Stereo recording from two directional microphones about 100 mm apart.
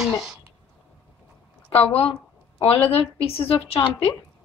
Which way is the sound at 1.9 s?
70° left (ahead or behind).